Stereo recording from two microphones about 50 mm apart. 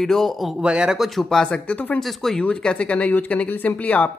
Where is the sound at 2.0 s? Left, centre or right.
Centre.